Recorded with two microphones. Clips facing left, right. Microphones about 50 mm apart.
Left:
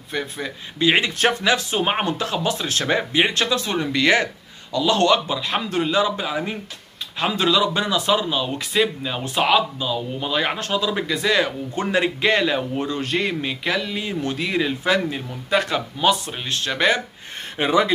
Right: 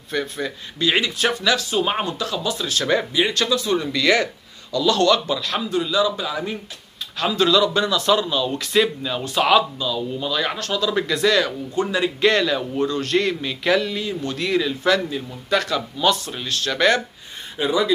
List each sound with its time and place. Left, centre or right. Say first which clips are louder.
0.1 s speech: right 2 dB; centre
5.7 s speech: even; left; by 8.6 s centre
8.7 s speech: right 1 dB; centre
9.1 s speech: right 3 dB; left
11.7 s speech: even; left
12.2 s speech: right 4 dB; centre
12.4 s speech: right 1 dB; left
13.7 s speech: right 6 dB; centre
13.9 s speech: left 1 dB; left
14.3 s speech: right 2 dB; centre
15.5 s speech: even; left
16.0 s speech: left 1 dB; centre
16.3 s speech: right 1 dB; left
17.6 s speech: left 1 dB; left